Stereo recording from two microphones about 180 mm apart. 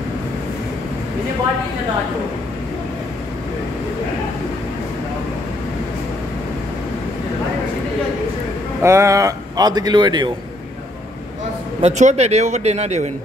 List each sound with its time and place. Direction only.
8.8 s speech: 15° right (ahead or behind)
11.8 s a man's voice: 40° right (ahead or behind)